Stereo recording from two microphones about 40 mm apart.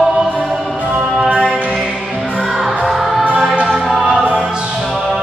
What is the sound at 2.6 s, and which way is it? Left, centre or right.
Music, centre.